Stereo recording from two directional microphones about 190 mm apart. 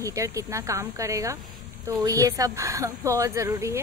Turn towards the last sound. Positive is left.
turn(degrees=-15)  # may be behind; listen again after turning